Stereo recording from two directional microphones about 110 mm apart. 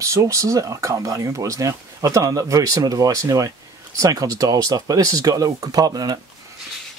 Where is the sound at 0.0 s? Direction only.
30° right (ahead or behind).